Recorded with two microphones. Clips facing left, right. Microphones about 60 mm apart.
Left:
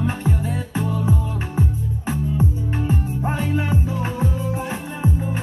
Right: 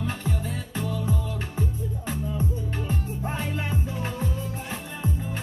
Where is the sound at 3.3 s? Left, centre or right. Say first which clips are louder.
Left 8 dB; centre.